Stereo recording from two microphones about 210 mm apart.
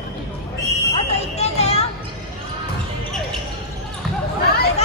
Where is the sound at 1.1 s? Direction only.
30° left (ahead or behind).